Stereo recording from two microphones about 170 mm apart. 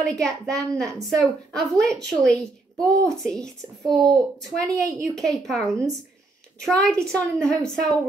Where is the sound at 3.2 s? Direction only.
5° left (ahead or behind).